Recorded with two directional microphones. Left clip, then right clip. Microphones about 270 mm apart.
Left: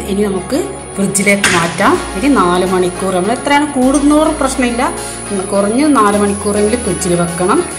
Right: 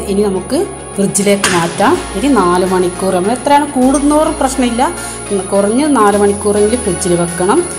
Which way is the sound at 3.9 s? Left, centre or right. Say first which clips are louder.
Left 2 dB; right.